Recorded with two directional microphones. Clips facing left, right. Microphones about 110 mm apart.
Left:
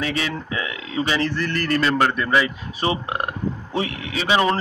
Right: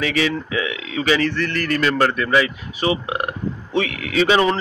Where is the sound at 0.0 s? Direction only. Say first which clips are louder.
Right 4 dB; 35° left (ahead or behind).